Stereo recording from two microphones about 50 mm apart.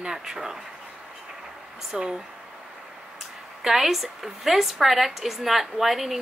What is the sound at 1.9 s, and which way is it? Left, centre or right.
Speech, centre.